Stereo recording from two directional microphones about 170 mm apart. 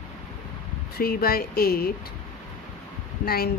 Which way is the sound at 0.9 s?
60° left (ahead or behind).